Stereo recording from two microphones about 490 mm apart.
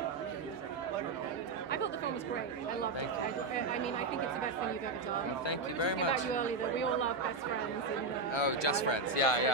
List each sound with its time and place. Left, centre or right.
5.5 s speech: left
6.3 s speech: centre
8.3 s speech: left